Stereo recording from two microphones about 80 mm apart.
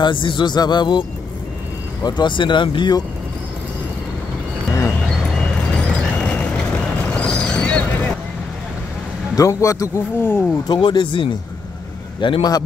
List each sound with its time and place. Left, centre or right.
0.0 s speech: left
2.0 s speech: left
5.4 s vehicle: centre
9.3 s a man's voice: left
10.2 s speech: left
10.7 s speech: left